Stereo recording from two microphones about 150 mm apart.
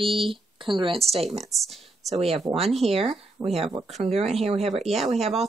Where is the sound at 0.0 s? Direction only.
35° right (ahead or behind).